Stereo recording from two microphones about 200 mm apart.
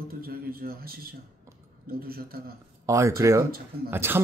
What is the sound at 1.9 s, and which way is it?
Speech, 50° right (ahead or behind).